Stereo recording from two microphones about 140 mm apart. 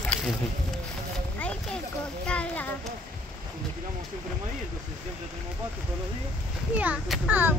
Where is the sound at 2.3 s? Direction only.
10° left (ahead or behind).